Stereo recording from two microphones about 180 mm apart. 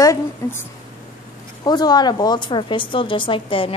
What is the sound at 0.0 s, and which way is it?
A woman's voice, 15° left (ahead or behind).